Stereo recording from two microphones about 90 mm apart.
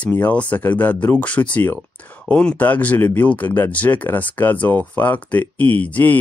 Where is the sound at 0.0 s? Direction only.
15° left (ahead or behind).